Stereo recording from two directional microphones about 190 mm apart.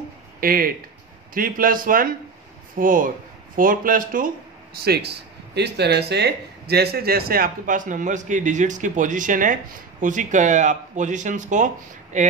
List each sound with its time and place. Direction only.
0.4 s speech: 50° right (ahead or behind)
4.8 s speech: 60° right (ahead or behind); by 12.3 s 40° right (ahead or behind)